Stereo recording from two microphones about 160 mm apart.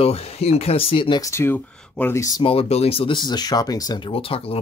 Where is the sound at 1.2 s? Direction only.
15° left (ahead or behind).